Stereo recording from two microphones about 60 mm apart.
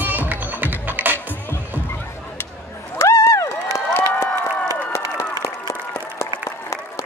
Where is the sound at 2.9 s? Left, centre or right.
Left.